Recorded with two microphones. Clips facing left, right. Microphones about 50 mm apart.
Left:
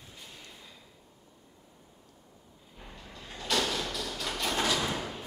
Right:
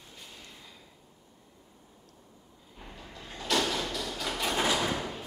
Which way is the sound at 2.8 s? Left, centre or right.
Centre.